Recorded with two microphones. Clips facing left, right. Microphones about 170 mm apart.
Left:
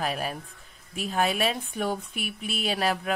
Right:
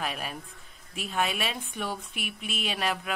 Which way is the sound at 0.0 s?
35° left (ahead or behind).